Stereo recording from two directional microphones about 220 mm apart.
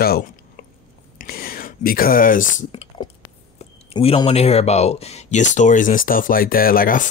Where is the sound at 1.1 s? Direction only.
45° left (ahead or behind).